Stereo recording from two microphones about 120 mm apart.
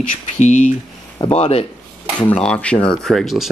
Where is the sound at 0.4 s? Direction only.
90° left.